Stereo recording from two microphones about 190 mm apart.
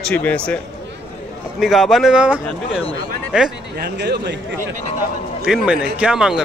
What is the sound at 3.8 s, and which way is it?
Speech, 60° right (ahead or behind).